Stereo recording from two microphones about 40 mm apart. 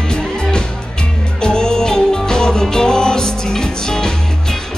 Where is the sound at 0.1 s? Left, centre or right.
Left.